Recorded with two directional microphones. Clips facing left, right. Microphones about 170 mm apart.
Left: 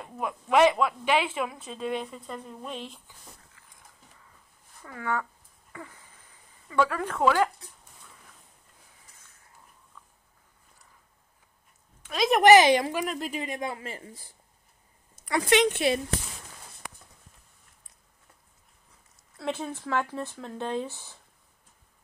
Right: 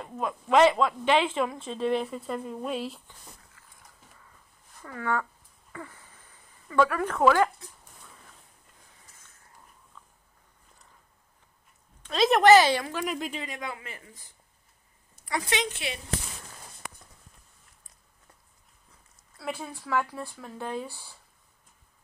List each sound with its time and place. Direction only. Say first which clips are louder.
0.0 s speech: right 1 dB; 15° left (ahead or behind); by 3.0 s 5° right (ahead or behind)
4.8 s speech: right 1 dB; 15° left (ahead or behind)
5.7 s a sound: right 2 dB; 15° left (ahead or behind)
6.7 s speech: right 2 dB; 20° left (ahead or behind)
12.1 s speech: even; 15° left (ahead or behind)
13.0 s speech: even; centre (ahead or behind)
13.4 s speech: left 4 dB; 25° left (ahead or behind)
15.2 s speech: left 7 dB; 60° left (ahead or behind)
19.3 s speech: left 4 dB; 20° left (ahead or behind)